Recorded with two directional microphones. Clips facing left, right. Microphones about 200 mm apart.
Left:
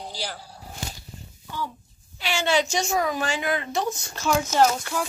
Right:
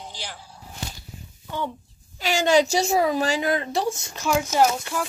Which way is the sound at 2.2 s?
40° right (ahead or behind).